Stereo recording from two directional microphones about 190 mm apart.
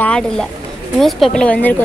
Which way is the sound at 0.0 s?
5° left (ahead or behind).